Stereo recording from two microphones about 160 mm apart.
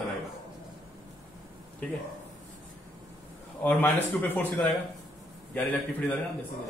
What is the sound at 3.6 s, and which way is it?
Speech, 10° left (ahead or behind).